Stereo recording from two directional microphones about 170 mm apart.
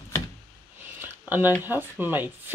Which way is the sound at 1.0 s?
10° right (ahead or behind).